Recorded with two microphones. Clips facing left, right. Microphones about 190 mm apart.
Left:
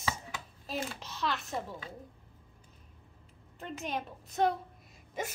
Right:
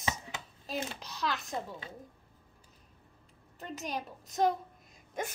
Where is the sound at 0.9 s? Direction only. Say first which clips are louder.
Even; centre (ahead or behind).